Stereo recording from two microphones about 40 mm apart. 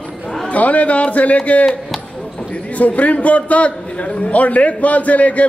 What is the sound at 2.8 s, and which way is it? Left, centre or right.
A man's voice, left.